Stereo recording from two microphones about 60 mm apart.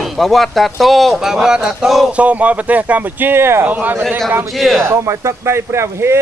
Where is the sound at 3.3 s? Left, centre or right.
Right.